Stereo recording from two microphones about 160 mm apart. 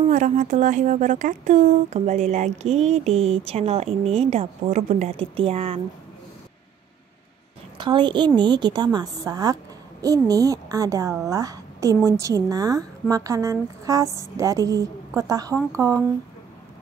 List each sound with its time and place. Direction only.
0.1 s speech: 50° right (ahead or behind)
5.2 s speech: 35° right (ahead or behind)
7.7 s a woman's voice: 30° right (ahead or behind)